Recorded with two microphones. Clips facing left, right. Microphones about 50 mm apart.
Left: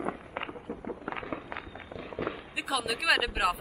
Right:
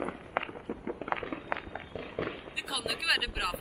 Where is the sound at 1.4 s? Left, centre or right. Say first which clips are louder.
Right 3 dB; right.